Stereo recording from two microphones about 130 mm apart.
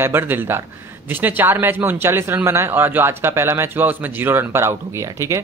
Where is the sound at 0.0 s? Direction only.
15° right (ahead or behind).